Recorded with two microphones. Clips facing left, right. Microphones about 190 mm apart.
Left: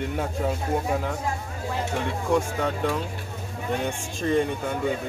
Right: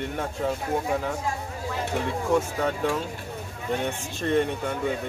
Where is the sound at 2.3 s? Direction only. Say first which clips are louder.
Even; centre (ahead or behind).